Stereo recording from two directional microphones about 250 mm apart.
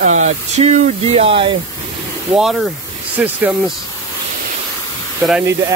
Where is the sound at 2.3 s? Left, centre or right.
Centre.